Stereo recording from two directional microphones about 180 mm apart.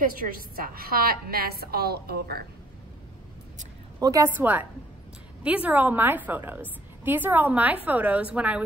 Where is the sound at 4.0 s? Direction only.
20° right (ahead or behind).